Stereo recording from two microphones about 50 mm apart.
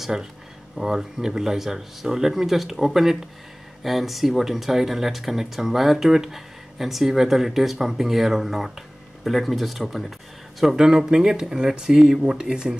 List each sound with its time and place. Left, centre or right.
0.0 s speech: centre